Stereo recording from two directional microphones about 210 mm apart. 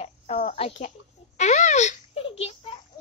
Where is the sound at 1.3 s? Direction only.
35° left (ahead or behind).